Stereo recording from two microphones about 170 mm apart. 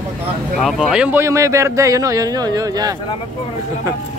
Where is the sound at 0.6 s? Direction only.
Centre (ahead or behind); by 3.0 s 20° right (ahead or behind).